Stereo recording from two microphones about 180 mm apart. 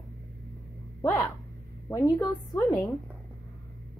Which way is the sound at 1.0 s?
10° left (ahead or behind).